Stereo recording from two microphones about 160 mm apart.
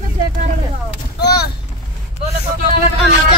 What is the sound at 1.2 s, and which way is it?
Vehicle, 80° left.